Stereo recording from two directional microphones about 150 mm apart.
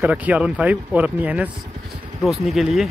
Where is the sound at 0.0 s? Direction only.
10° right (ahead or behind).